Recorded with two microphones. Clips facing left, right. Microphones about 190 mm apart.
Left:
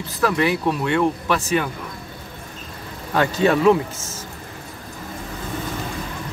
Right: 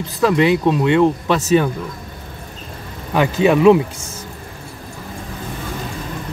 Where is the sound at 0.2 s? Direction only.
20° right (ahead or behind).